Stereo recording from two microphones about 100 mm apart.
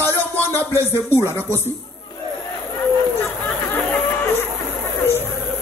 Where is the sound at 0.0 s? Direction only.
25° left (ahead or behind).